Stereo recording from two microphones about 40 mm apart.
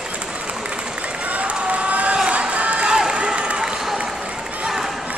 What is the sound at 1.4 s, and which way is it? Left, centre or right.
Run, right.